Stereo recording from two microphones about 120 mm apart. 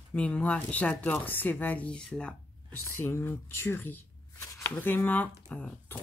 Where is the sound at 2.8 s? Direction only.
20° left (ahead or behind).